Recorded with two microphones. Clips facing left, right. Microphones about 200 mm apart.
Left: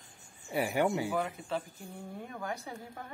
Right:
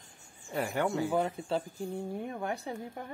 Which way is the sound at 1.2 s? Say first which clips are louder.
Right 4 dB; 30° right (ahead or behind).